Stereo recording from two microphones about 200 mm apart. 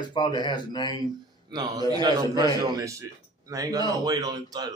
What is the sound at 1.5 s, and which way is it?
A man's voice, 20° right (ahead or behind).